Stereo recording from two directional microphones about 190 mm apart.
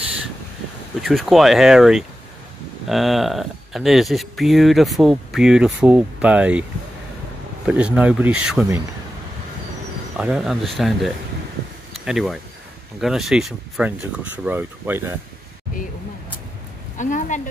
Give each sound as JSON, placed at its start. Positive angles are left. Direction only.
{"t": 1.0, "sound": "speech", "side_deg": 0}
{"t": 7.6, "sound": "speech", "side_deg": -5}
{"t": 10.1, "sound": "speech", "side_deg": -5}
{"t": 17.0, "sound": "a sound", "side_deg": 40}